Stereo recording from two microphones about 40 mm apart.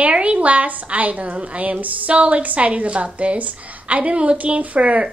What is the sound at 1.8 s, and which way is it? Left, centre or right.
A woman's voice, right.